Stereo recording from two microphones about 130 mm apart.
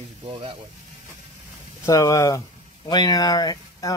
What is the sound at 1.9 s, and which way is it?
Speech, 25° left (ahead or behind).